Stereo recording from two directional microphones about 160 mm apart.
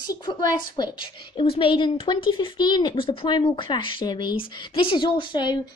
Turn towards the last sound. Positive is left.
turn(degrees=30)  # may be behind; listen again after turning